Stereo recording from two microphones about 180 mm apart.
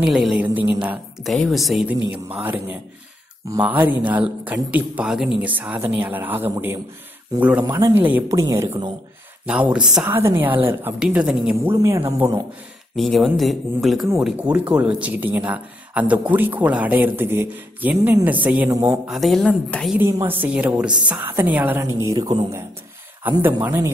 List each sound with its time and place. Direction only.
0.0 s a woman's voice: centre (ahead or behind); by 8.9 s 20° right (ahead or behind)
9.5 s speech: 5° right (ahead or behind)
11.7 s speech: 15° right (ahead or behind)
12.9 s a woman's voice: centre (ahead or behind)
20.0 s speech: 15° right (ahead or behind)
23.2 s speech: 10° right (ahead or behind)